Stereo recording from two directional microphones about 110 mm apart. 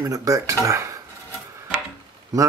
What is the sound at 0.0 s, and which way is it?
Speech, 30° right (ahead or behind).